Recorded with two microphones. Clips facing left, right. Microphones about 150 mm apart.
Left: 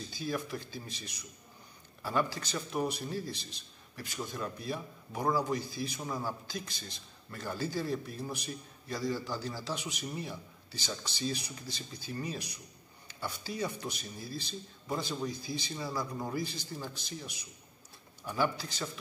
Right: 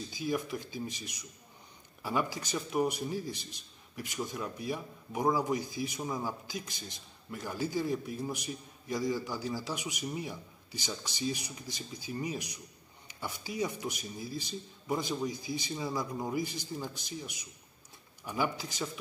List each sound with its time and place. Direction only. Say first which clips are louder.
0.1 s a man's voice: right 3 dB; 15° right (ahead or behind)
18.2 s a man's voice: left 1 dB; 15° right (ahead or behind)